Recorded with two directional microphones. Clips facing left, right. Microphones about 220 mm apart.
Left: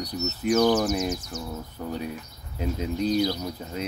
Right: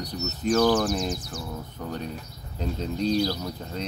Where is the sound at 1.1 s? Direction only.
30° right (ahead or behind).